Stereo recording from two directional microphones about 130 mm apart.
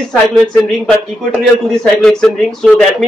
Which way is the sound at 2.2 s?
5° left (ahead or behind).